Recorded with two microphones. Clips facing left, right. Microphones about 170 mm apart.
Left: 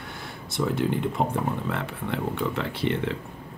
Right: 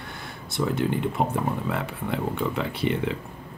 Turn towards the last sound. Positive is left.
turn(degrees=-10)  # may be behind; listen again after turning